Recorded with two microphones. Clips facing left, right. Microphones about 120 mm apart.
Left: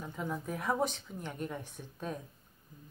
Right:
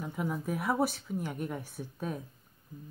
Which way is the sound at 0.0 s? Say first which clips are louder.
Right 4 dB; 10° right (ahead or behind).